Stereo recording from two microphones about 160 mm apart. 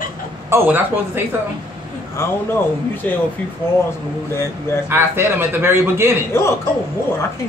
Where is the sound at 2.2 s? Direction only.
15° left (ahead or behind).